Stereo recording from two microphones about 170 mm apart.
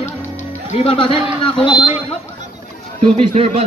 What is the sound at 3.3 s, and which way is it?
Speech, 35° right (ahead or behind).